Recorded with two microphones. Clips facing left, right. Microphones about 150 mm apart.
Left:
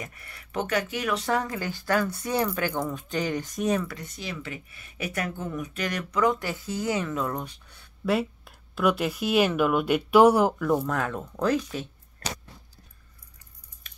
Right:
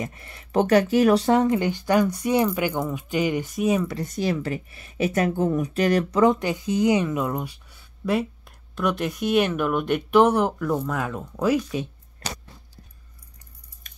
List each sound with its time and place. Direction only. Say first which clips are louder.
0.0 s speech: right 8 dB; 25° right (ahead or behind)
1.3 s speech: right 8 dB; 20° right (ahead or behind)
3.8 s speech: right 10 dB; 35° right (ahead or behind); by 11.9 s 15° right (ahead or behind)